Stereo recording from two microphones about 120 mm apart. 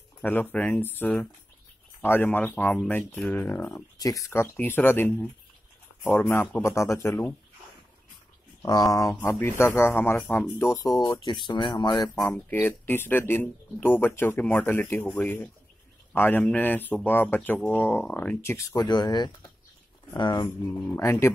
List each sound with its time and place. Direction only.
0.2 s speech: 15° left (ahead or behind)
3.7 s speech: 30° left (ahead or behind)
6.6 s speech: 25° left (ahead or behind)
8.6 s speech: 30° left (ahead or behind); by 10.7 s 15° left (ahead or behind)
10.7 s speech: 35° left (ahead or behind)
12.3 s speech: 15° left (ahead or behind)
18.8 s speech: 35° left (ahead or behind)
20.4 s speech: 20° left (ahead or behind)